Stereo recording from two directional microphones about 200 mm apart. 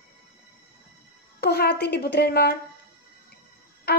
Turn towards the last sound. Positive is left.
turn(degrees=55)  # may be behind; listen again after turning